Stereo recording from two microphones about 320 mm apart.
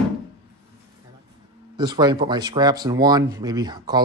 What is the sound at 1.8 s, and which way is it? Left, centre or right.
Speech, centre.